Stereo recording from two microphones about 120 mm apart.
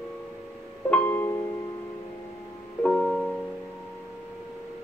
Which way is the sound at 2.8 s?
10° left (ahead or behind).